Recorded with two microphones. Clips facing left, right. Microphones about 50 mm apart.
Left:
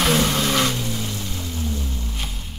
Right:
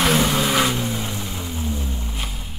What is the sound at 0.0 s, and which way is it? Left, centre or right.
Vehicle, centre.